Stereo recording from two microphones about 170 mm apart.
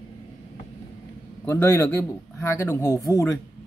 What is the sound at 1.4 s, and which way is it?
Speech, 15° left (ahead or behind).